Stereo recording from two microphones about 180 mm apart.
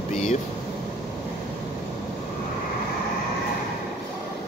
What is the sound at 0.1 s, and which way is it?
Air conditioning, 45° left (ahead or behind).